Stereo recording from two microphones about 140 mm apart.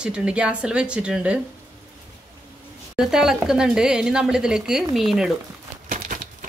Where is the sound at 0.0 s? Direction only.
5° right (ahead or behind).